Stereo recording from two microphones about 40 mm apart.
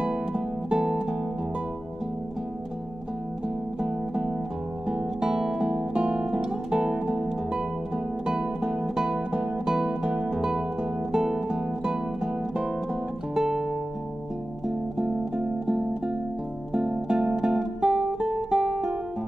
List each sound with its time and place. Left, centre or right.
0.0 s music: centre
3.4 s music: centre
8.3 s music: centre
13.3 s music: centre
14.7 s music: centre
16.7 s guitar: centre
17.6 s music: centre